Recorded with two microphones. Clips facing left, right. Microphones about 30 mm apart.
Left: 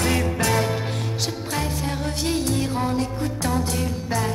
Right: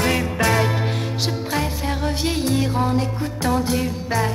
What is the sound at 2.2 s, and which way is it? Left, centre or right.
Music, centre.